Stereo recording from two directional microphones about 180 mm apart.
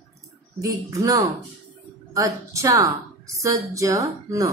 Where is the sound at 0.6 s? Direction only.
20° right (ahead or behind).